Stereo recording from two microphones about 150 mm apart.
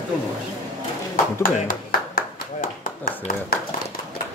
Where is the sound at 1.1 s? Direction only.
70° left (ahead or behind).